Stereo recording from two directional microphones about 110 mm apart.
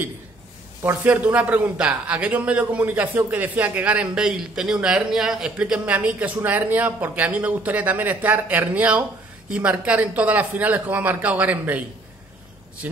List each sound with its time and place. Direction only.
0.8 s a man's voice: 15° right (ahead or behind)